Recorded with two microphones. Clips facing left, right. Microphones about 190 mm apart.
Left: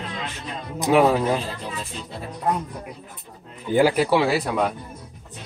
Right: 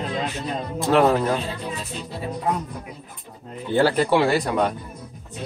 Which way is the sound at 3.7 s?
10° left (ahead or behind).